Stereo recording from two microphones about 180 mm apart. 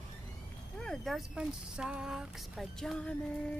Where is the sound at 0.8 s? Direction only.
5° left (ahead or behind).